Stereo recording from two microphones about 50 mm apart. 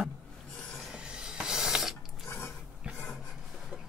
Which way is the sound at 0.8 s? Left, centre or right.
Centre.